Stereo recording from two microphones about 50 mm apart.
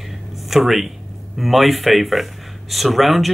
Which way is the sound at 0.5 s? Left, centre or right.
Centre.